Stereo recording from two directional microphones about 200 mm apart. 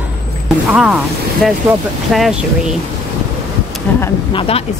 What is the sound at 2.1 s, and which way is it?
Speech, centre (ahead or behind).